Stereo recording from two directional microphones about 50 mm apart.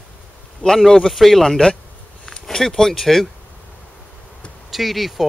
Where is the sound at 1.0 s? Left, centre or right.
Centre.